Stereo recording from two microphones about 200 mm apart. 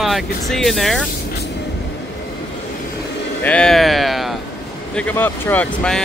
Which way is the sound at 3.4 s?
5° left (ahead or behind).